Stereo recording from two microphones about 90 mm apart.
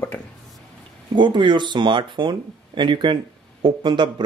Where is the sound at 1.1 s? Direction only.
60° right (ahead or behind).